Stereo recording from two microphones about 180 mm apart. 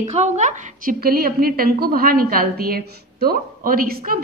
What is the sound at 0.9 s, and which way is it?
A woman's voice, 55° right (ahead or behind).